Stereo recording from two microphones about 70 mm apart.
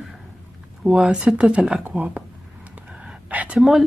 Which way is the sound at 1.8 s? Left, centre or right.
Right.